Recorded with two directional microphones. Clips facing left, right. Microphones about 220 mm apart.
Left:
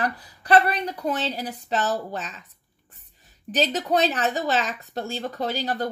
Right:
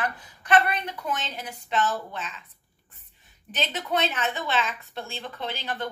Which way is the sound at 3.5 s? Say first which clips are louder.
Left 6 dB; 35° left (ahead or behind).